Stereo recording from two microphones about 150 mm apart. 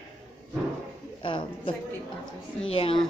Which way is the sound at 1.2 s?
35° left (ahead or behind).